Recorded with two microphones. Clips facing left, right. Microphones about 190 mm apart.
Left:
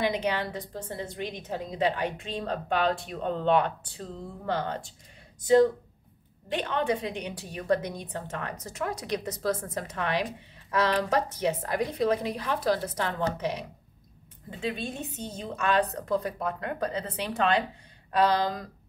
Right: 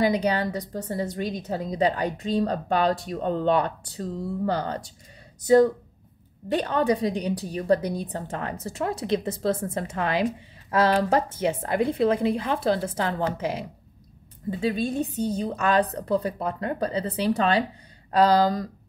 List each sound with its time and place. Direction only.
0.0 s a woman's voice: 40° right (ahead or behind)
6.5 s a woman's voice: 40° right (ahead or behind)
14.6 s a woman's voice: 35° right (ahead or behind)